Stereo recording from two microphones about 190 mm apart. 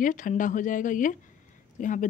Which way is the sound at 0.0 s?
45° left (ahead or behind).